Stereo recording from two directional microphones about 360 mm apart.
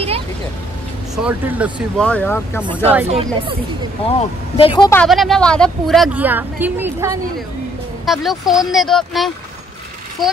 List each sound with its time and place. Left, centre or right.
1.1 s speech: centre
3.1 s speech: centre
4.1 s speech: centre